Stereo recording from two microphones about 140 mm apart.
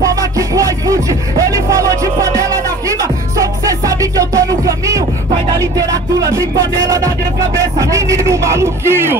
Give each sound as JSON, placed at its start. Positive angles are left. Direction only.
{"t": 0.0, "sound": "music", "side_deg": -25}
{"t": 5.6, "sound": "speech", "side_deg": -25}
{"t": 7.5, "sound": "speech", "side_deg": -20}